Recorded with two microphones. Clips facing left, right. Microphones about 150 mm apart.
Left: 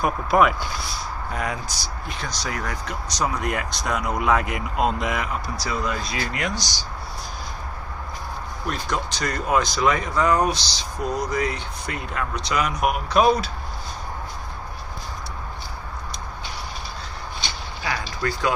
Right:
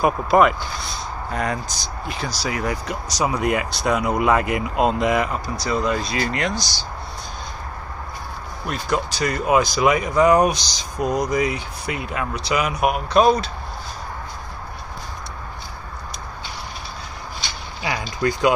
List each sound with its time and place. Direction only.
0.0 s speech: centre (ahead or behind)
2.0 s speech: 5° right (ahead or behind); by 6.9 s 15° left (ahead or behind)
8.6 s speech: 5° right (ahead or behind)
17.8 s speech: 20° right (ahead or behind)